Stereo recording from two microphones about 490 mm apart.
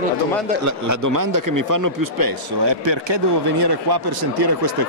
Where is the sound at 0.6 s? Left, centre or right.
Right.